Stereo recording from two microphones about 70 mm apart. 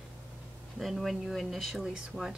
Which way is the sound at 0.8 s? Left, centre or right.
Centre.